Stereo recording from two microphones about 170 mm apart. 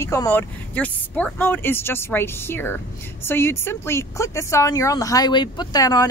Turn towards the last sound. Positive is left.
turn(degrees=20)  # may be behind; listen again after turning